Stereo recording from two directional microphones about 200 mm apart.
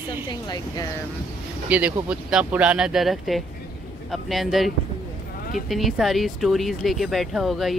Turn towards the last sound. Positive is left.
turn(degrees=0)  # may be behind; listen again after turning